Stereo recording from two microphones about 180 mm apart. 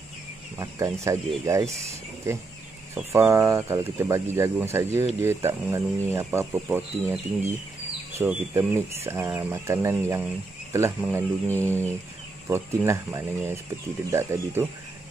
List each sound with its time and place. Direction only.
0.6 s speech: 15° right (ahead or behind)
8.2 s speech: 15° right (ahead or behind)
11.4 s a sound: 10° left (ahead or behind)
12.4 s speech: 15° right (ahead or behind)